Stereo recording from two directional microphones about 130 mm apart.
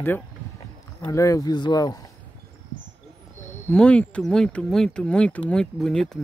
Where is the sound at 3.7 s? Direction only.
10° left (ahead or behind).